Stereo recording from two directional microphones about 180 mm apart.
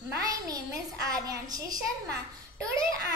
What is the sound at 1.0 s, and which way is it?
Speech, 20° right (ahead or behind).